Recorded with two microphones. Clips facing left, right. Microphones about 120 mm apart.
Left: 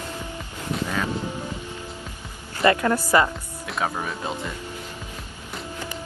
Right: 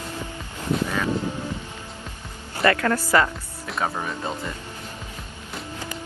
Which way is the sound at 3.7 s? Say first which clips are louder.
Even; centre (ahead or behind).